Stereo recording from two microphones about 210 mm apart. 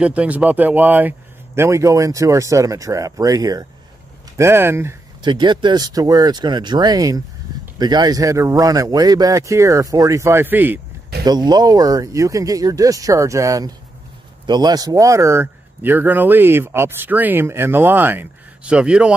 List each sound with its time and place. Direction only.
0.0 s a man's voice: 5° right (ahead or behind)
11.2 s a man's voice: 20° right (ahead or behind)